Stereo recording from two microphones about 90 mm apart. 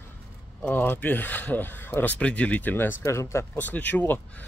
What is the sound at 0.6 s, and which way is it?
Speech, 20° left (ahead or behind).